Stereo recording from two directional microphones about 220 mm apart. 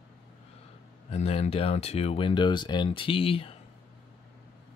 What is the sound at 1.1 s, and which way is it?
Speech, 30° left (ahead or behind).